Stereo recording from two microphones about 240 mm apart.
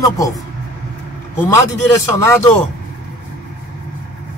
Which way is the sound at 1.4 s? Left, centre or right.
Centre.